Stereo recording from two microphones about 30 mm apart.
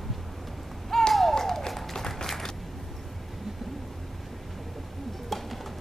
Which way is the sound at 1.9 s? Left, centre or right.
Centre.